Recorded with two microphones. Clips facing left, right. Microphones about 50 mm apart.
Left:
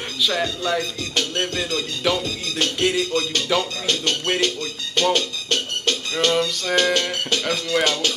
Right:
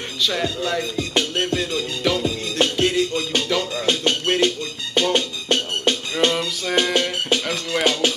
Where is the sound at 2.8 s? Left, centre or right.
Centre.